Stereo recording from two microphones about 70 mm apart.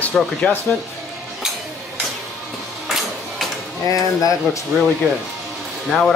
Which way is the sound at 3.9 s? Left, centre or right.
Left.